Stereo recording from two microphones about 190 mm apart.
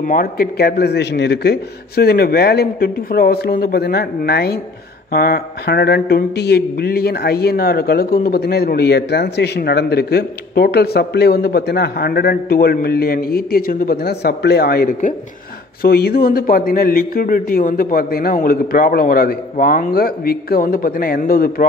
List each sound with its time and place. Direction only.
0.0 s a man's voice: 45° left (ahead or behind)